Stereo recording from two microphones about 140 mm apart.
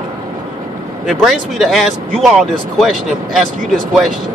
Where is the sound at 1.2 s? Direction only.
Centre (ahead or behind).